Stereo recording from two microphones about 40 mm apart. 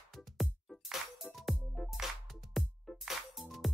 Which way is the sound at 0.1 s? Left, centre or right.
Centre.